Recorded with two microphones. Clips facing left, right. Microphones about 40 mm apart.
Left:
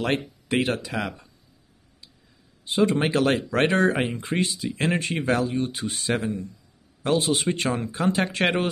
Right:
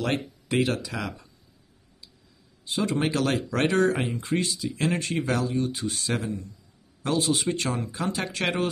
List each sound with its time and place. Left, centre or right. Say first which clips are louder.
0.0 s speech: left 2 dB; left
2.6 s speech: left 4 dB; left